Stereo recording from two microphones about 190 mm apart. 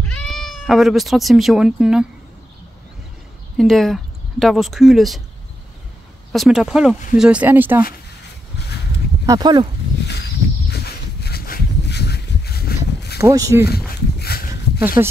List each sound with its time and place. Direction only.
0.0 s speech: 5° left (ahead or behind)
3.5 s speech: centre (ahead or behind)
6.3 s speech: centre (ahead or behind)
9.2 s speech: 20° right (ahead or behind)
10.7 s a sound: 55° left (ahead or behind)
13.2 s speech: 15° right (ahead or behind)
13.7 s a sound: 55° left (ahead or behind)
15.0 s speech: 15° right (ahead or behind)